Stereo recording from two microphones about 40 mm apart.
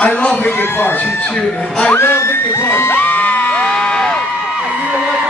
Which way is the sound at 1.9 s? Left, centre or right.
Left.